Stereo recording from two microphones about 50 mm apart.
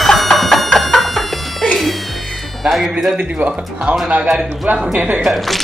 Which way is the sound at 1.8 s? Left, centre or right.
Centre.